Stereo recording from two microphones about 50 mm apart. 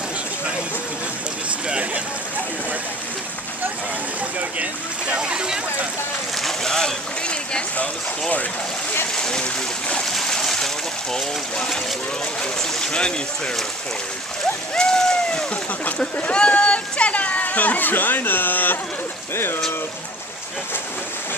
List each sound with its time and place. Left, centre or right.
4.4 s speech: right
5.2 s speech: centre
6.4 s boat: centre
7.7 s speech: left
9.1 s speech: centre
10.0 s a sound: centre
11.1 s speech: centre
12.8 s speech: centre
14.8 s a sound: centre
16.2 s speech: left
19.3 s speech: left